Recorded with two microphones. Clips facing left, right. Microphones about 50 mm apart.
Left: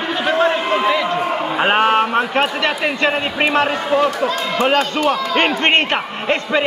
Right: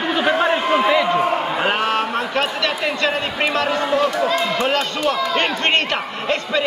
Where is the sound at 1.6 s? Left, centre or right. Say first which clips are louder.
Left 9 dB; left.